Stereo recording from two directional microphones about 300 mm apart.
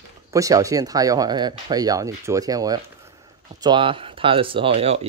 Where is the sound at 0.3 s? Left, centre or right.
Centre.